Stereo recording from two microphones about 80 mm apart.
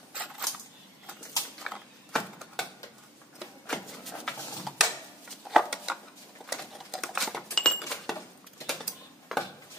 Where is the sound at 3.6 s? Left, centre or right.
Centre.